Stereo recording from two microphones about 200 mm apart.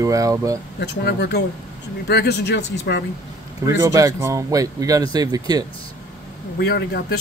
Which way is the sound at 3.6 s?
15° right (ahead or behind).